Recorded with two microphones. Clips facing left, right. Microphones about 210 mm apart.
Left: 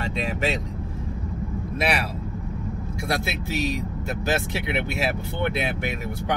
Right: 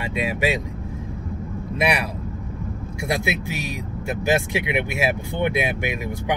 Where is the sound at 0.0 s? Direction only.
10° right (ahead or behind).